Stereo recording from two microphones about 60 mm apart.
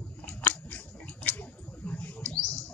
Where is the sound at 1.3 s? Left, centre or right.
Left.